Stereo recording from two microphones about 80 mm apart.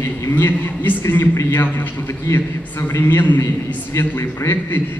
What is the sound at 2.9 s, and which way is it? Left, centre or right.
A man's voice, left.